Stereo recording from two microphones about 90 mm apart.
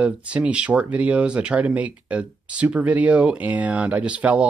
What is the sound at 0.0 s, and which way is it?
Speech, 15° right (ahead or behind).